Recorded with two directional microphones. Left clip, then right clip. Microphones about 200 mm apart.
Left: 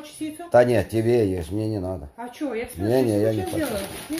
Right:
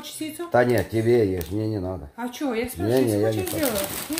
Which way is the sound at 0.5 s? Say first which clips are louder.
Left 3 dB; 10° left (ahead or behind).